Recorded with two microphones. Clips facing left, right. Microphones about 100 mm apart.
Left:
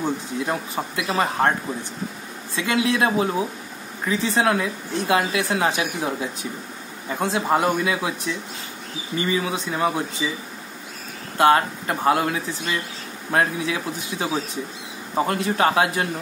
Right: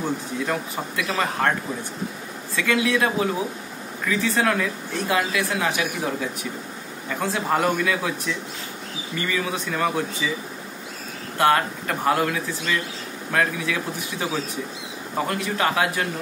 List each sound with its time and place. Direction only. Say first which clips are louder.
0.0 s a woman's voice: left 1 dB; 20° left (ahead or behind)
2.5 s a woman's voice: even; 25° left (ahead or behind)
9.1 s a woman's voice: left 3 dB; 20° left (ahead or behind)
11.3 s a woman's voice: left 3 dB; 20° left (ahead or behind)